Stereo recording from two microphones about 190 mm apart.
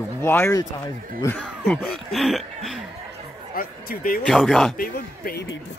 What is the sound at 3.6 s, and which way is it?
Speech, 50° left (ahead or behind).